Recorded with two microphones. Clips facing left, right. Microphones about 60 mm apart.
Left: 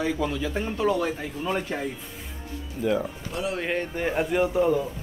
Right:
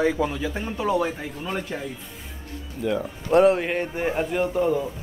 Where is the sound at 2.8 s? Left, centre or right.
Centre.